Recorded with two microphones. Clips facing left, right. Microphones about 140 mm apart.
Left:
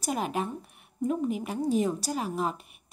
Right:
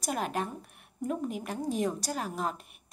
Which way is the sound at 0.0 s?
Centre (ahead or behind).